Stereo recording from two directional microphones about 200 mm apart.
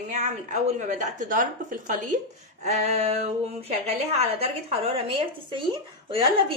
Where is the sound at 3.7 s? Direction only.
30° right (ahead or behind).